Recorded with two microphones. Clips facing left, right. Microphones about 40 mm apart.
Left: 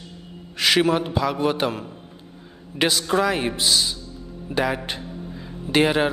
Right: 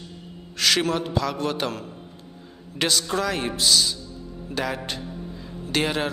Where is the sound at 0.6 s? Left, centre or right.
Centre.